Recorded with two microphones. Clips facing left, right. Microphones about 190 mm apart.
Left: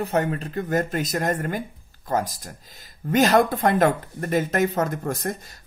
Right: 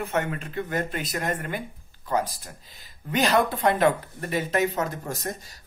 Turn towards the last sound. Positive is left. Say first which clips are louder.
# left 5 dB
turn(degrees=55)  # may be behind; listen again after turning